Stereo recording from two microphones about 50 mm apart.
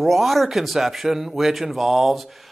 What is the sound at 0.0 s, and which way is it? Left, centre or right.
Speech, centre.